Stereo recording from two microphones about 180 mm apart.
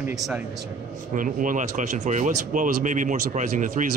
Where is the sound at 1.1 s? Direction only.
50° right (ahead or behind).